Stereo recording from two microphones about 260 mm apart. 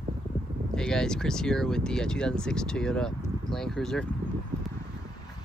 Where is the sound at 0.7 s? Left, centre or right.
Centre.